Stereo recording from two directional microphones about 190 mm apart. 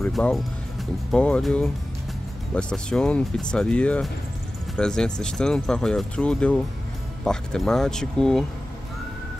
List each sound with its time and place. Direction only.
0.0 s speech: centre (ahead or behind)